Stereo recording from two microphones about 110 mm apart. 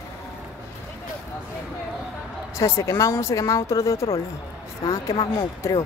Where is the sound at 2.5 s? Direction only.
30° left (ahead or behind).